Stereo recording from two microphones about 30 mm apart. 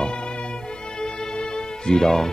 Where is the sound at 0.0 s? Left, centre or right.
Left.